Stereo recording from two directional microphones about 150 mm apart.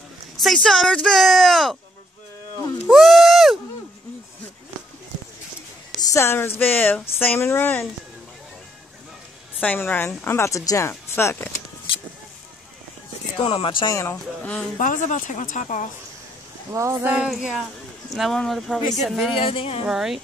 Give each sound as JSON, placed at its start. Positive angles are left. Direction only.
{"t": 0.4, "sound": "speech", "side_deg": 0}
{"t": 2.9, "sound": "a sound", "side_deg": 0}
{"t": 5.9, "sound": "speech", "side_deg": 20}
{"t": 9.6, "sound": "speech", "side_deg": 10}
{"t": 13.4, "sound": "speech", "side_deg": 35}
{"t": 13.9, "sound": "speech", "side_deg": 10}
{"t": 14.8, "sound": "speech", "side_deg": 55}
{"t": 16.7, "sound": "speech", "side_deg": -20}
{"t": 17.1, "sound": "speech", "side_deg": -5}
{"t": 19.4, "sound": "speech", "side_deg": 35}
{"t": 19.8, "sound": "speech", "side_deg": -5}